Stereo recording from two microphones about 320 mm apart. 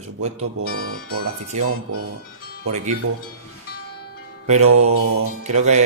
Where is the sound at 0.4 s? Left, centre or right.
Right.